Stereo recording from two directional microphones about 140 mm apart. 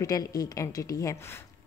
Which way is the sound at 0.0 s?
25° left (ahead or behind).